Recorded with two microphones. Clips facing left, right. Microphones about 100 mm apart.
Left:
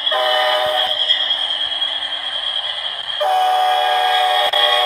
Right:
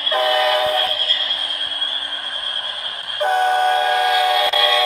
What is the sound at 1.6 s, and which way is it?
Radio, 90° left.